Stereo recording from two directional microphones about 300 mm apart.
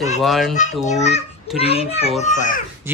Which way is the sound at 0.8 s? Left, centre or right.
Left.